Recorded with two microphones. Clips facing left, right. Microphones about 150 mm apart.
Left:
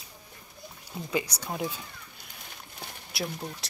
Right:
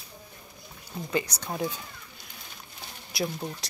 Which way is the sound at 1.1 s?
10° left (ahead or behind).